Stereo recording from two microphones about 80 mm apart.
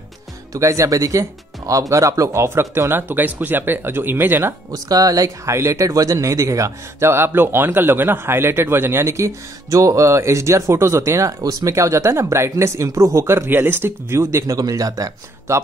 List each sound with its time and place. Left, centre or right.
0.5 s speech: right
4.7 s speech: right
14.6 s speech: right